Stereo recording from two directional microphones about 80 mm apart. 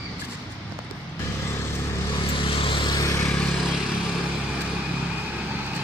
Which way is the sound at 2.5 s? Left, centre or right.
Left.